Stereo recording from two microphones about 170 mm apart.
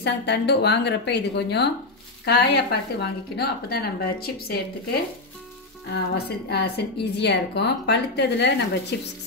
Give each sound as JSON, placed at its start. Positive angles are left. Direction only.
{"t": 0.0, "sound": "a woman's voice", "side_deg": 80}
{"t": 5.9, "sound": "a woman's voice", "side_deg": 70}